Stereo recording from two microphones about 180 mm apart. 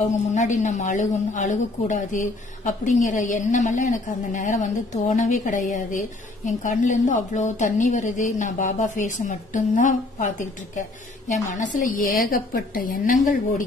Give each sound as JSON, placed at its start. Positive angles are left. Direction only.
{"t": 0.3, "sound": "a woman's voice", "side_deg": 40}